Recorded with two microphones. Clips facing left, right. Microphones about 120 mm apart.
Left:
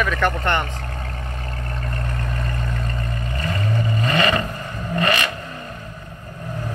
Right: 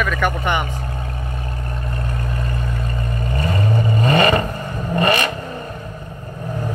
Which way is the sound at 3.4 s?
20° right (ahead or behind).